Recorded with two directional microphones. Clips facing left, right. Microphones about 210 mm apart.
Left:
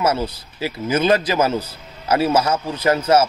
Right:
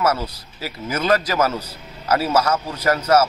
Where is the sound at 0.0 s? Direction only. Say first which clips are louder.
Left 1 dB; 25° left (ahead or behind).